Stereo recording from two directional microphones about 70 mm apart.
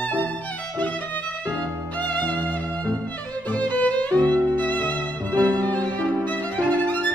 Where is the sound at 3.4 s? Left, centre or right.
Left.